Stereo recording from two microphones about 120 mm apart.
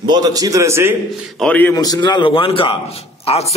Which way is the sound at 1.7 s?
35° left (ahead or behind).